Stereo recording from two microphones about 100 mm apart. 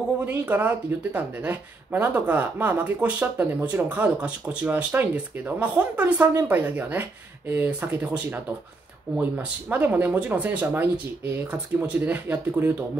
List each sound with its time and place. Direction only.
0.2 s speech: 15° right (ahead or behind)